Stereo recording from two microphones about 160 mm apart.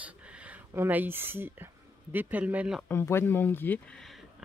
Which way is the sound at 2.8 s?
15° left (ahead or behind).